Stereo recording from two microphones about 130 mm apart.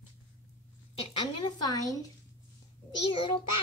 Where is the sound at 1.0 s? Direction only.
45° left (ahead or behind).